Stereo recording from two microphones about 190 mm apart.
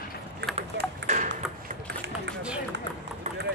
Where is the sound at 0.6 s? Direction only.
40° right (ahead or behind).